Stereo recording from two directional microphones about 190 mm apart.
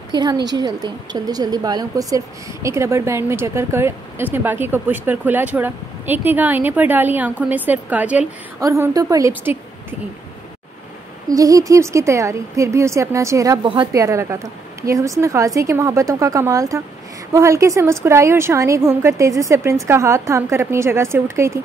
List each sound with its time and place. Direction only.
0.1 s a woman's voice: 20° right (ahead or behind)
11.2 s a woman's voice: 20° right (ahead or behind)